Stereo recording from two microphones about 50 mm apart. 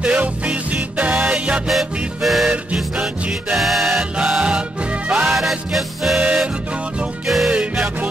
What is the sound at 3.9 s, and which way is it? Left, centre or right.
Music, centre.